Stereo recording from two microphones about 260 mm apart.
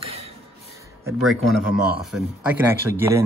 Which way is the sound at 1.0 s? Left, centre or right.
Centre.